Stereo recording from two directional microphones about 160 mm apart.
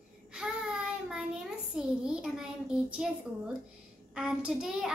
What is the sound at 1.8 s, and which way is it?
A woman's voice, 5° right (ahead or behind).